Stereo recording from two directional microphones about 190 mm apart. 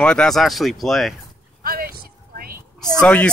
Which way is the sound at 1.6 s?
50° right (ahead or behind).